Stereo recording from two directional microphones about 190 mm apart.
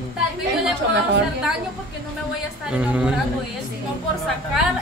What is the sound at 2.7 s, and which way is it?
Speech, 5° right (ahead or behind).